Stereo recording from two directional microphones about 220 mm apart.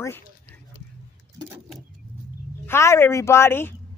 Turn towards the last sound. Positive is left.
turn(degrees=10)  # may be behind; listen again after turning